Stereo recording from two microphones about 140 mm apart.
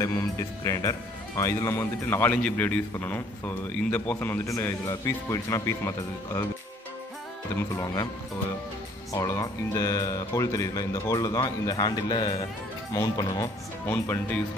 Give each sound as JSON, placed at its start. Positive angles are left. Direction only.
{"t": 0.0, "sound": "speech", "side_deg": 20}
{"t": 7.7, "sound": "speech", "side_deg": 25}
{"t": 9.1, "sound": "speech", "side_deg": 25}